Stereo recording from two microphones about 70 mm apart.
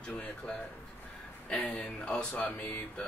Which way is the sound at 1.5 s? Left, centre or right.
Centre.